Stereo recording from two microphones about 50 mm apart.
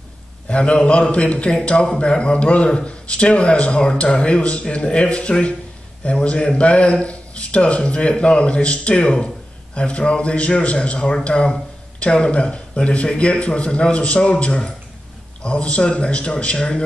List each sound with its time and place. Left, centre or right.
0.5 s a man's voice: left